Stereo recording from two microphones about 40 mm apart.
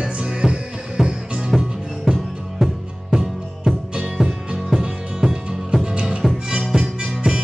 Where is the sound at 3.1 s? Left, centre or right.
Centre.